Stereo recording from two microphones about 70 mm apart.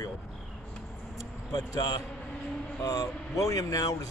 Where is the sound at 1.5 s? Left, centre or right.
Left.